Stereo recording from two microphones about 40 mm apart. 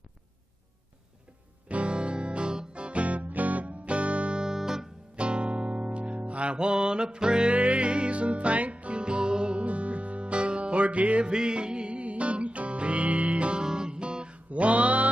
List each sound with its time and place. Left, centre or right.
1.7 s music: right
4.4 s music: centre
5.1 s music: right